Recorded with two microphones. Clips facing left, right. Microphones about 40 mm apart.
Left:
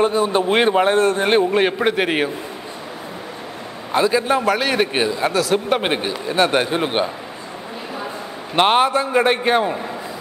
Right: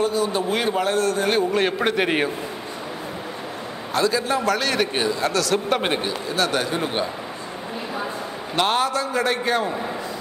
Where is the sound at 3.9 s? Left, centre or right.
Left.